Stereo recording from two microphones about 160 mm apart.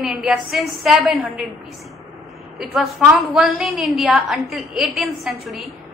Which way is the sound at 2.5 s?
Centre (ahead or behind).